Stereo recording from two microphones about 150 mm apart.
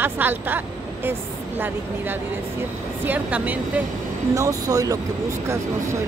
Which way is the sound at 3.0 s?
10° right (ahead or behind).